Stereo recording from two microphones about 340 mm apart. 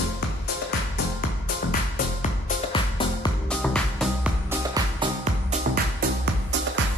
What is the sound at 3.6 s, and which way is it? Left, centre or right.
Music, centre.